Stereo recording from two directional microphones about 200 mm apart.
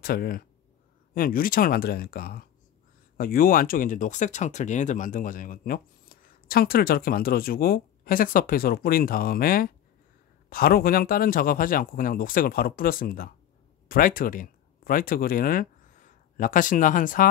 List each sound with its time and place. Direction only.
0.0 s speech: 50° left (ahead or behind)